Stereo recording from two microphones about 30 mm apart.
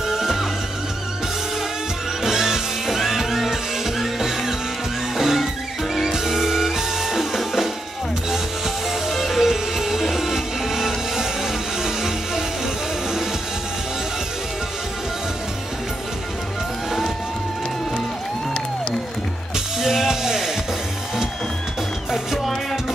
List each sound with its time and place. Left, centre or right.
0.1 s music: centre
2.2 s music: centre
2.9 s music: centre
7.1 s music: centre
9.1 s music: centre
19.5 s music: centre
22.1 s music: centre